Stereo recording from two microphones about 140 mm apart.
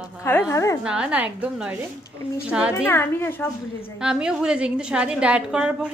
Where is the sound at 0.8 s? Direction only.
5° right (ahead or behind).